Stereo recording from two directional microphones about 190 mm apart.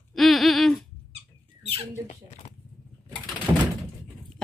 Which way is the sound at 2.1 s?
35° left (ahead or behind).